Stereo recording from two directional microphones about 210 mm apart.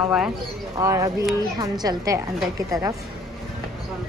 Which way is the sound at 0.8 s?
15° right (ahead or behind).